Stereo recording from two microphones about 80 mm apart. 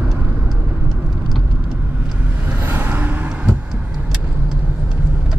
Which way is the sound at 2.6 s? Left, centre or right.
Right.